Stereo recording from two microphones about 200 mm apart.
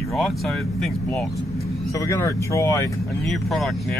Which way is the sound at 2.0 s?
15° left (ahead or behind).